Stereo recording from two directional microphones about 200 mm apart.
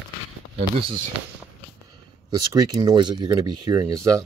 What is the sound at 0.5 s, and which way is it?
Speech, 30° right (ahead or behind).